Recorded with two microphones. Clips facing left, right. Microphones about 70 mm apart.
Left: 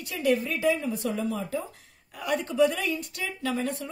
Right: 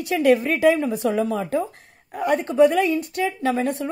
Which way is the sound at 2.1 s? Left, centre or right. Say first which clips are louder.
Right 7 dB; right.